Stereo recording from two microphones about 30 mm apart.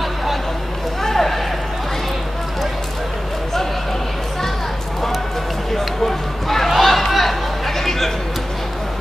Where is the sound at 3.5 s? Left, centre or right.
Centre.